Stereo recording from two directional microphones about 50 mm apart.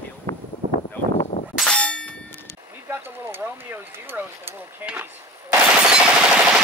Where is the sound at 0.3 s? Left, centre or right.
Left.